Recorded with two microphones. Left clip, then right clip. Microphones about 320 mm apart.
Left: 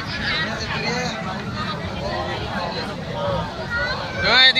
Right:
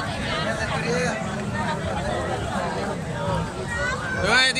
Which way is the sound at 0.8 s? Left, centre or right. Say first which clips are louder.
Even; right.